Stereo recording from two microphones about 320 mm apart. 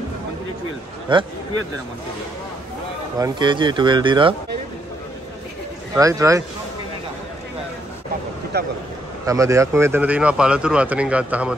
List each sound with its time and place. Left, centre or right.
1.1 s a man's voice: centre
3.2 s a man's voice: centre
5.9 s a man's voice: centre
8.5 s speech: right
9.2 s speech: centre